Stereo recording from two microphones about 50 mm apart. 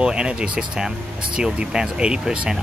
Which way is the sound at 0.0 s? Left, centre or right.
Centre.